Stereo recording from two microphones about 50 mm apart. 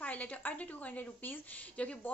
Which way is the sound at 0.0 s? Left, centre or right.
Left.